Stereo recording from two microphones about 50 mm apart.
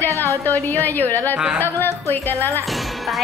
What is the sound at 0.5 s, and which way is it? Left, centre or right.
A woman's voice, left.